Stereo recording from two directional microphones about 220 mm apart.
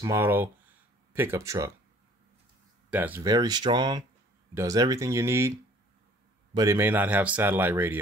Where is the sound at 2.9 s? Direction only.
5° right (ahead or behind).